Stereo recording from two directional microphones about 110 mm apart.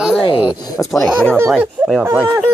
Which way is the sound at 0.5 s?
35° left (ahead or behind).